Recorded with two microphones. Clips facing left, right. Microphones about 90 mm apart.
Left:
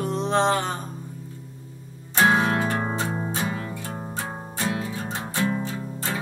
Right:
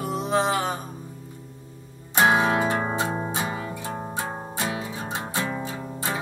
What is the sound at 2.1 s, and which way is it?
Music, 15° right (ahead or behind).